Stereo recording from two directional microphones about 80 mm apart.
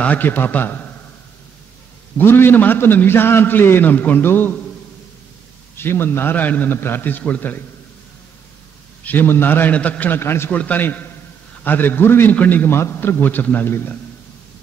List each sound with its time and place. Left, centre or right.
0.0 s a man's voice: left
2.1 s a man's voice: left
5.8 s a man's voice: left
9.0 s a man's voice: left
10.5 s a man's voice: left